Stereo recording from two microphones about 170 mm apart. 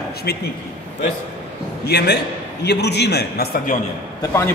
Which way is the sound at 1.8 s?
80° left.